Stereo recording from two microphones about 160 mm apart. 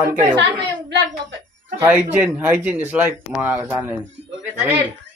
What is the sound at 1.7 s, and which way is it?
Speech, 10° right (ahead or behind).